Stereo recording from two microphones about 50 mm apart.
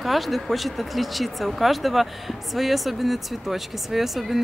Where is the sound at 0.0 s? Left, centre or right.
Centre.